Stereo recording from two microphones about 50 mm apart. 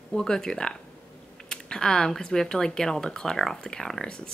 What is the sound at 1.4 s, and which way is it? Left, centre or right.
Typing, centre.